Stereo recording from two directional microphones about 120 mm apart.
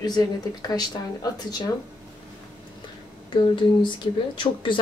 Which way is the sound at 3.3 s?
40° left (ahead or behind).